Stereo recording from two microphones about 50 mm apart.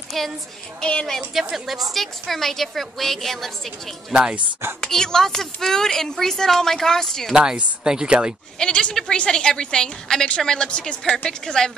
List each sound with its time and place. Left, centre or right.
0.1 s a woman's voice: centre
0.7 s a woman's voice: left
1.5 s a woman's voice: centre
4.1 s speech: right
4.7 s a woman's voice: centre
7.8 s speech: centre
8.5 s a woman's voice: centre